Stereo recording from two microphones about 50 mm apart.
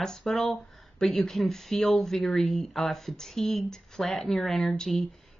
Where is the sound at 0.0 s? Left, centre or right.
Centre.